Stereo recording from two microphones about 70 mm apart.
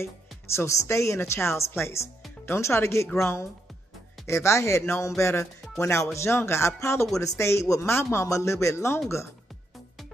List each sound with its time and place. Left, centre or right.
0.6 s speech: left